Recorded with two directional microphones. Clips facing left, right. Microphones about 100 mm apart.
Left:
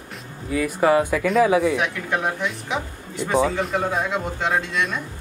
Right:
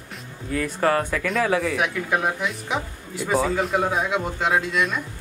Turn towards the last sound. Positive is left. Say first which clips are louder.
# right 1 dB
turn(degrees=0)  # may be behind; listen again after turning